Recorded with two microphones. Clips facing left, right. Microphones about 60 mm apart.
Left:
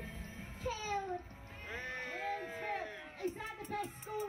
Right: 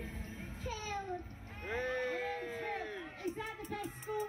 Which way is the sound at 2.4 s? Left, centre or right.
Left.